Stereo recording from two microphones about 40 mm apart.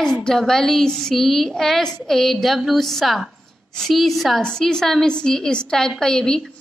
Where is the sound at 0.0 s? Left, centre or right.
Centre.